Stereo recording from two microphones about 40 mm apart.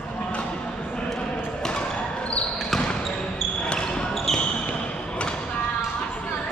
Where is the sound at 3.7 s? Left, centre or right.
Left.